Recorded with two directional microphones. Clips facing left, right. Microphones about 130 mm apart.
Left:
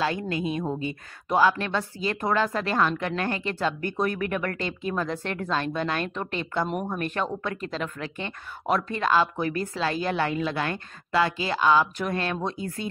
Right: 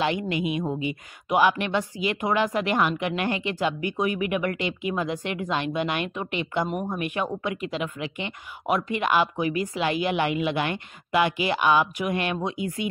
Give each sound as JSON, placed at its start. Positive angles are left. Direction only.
{"t": 0.0, "sound": "speech", "side_deg": -20}